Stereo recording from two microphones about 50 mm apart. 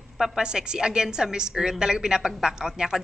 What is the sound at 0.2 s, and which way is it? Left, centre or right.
A woman's voice, centre.